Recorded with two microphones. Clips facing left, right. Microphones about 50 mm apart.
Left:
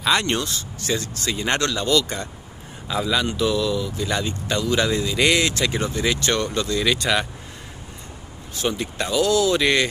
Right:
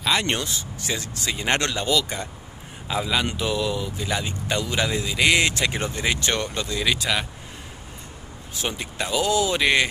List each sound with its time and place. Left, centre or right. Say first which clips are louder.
0.0 s speech: left 3 dB; centre
0.4 s speech: left 2 dB; centre
1.5 s speech: even; right
1.9 s speech: left 3 dB; centre
3.3 s speech: left 3 dB; right
5.4 s speech: left 1 dB; right
6.8 s speech: left 2 dB; centre
8.6 s speech: left 4 dB; centre